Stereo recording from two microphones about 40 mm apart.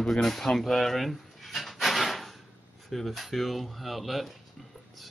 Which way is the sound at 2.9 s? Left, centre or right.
Centre.